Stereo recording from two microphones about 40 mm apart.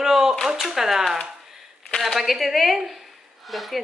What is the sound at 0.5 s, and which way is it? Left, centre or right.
Speech, centre.